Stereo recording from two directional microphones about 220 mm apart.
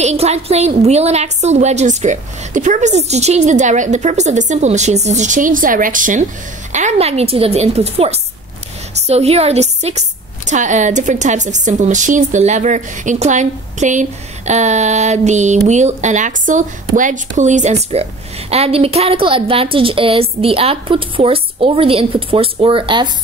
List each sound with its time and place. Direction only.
0.0 s a woman's voice: 30° right (ahead or behind)